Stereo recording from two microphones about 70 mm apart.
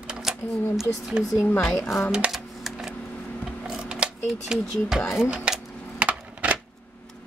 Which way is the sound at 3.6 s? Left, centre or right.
Centre.